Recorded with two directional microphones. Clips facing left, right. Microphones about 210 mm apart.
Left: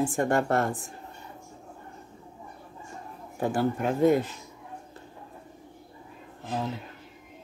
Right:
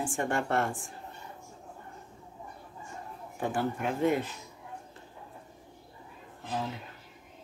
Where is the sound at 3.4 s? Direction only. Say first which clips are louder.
Left 5 dB; 35° left (ahead or behind).